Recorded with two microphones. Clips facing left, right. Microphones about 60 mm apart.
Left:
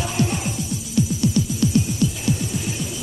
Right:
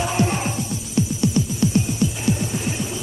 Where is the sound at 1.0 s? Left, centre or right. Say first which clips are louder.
Even; right.